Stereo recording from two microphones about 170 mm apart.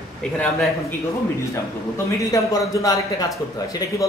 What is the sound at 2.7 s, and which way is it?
Speech, 20° left (ahead or behind).